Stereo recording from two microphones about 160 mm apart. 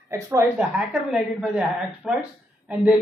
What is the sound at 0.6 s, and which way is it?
A woman's voice, 5° right (ahead or behind).